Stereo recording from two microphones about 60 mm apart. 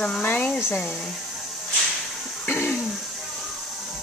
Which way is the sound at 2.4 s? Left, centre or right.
Left.